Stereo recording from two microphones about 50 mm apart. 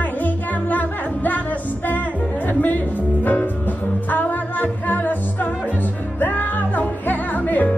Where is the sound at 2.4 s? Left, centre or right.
Left.